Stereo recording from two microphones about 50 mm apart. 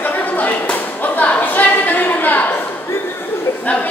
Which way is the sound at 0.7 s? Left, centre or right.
Left.